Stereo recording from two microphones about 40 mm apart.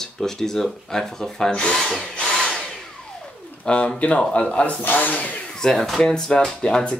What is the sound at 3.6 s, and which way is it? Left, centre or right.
Speech, left.